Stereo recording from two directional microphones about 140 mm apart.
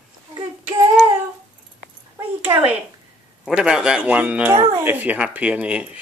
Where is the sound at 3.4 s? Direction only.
5° right (ahead or behind).